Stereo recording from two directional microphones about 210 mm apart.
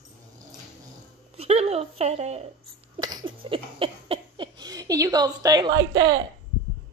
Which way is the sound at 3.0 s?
20° right (ahead or behind).